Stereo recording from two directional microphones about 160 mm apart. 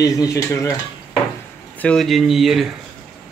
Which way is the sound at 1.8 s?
5° left (ahead or behind).